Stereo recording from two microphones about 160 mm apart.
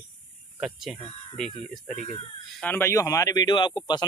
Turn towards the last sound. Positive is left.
turn(degrees=30)  # may be behind; listen again after turning